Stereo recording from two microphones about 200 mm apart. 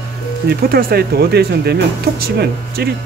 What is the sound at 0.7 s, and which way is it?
Speech, 50° right (ahead or behind).